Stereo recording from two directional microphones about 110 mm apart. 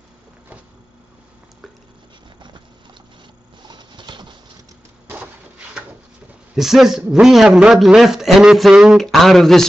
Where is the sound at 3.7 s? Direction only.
40° right (ahead or behind).